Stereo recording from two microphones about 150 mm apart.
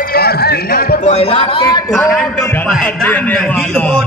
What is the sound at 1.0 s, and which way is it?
Speech, 45° left (ahead or behind).